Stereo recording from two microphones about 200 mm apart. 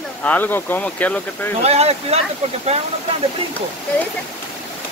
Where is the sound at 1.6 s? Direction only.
30° right (ahead or behind).